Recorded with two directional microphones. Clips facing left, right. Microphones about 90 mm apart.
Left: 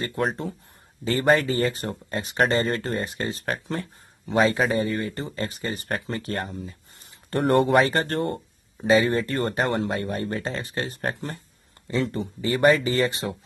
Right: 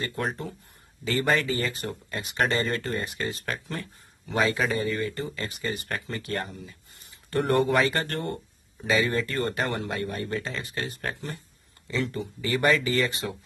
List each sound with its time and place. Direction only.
0.2 s speech: 35° left (ahead or behind)